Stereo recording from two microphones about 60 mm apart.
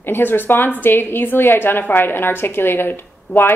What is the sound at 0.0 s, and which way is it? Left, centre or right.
A woman's voice, left.